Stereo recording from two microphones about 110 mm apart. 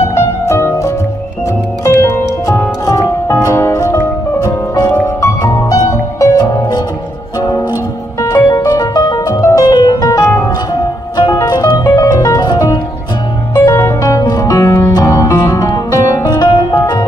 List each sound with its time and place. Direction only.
0.1 s music: 25° left (ahead or behind)
8.5 s music: 35° left (ahead or behind)
9.3 s music: 25° left (ahead or behind)
9.7 s music: 35° left (ahead or behind)